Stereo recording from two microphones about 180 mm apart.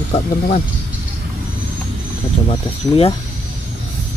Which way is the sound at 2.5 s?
30° left (ahead or behind).